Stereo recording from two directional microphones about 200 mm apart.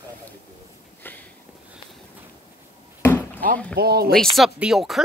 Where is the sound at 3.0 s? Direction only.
10° left (ahead or behind).